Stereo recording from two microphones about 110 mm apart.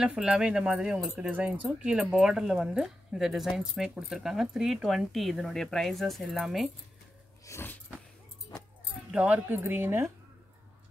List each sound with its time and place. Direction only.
0.0 s speech: 5° right (ahead or behind)
7.4 s a sound: 25° left (ahead or behind)
9.1 s speech: 15° right (ahead or behind)